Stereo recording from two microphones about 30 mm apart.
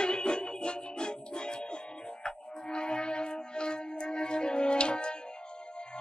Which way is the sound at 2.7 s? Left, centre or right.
Left.